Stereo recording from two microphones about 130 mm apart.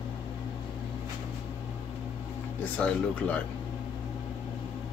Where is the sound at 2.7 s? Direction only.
10° left (ahead or behind).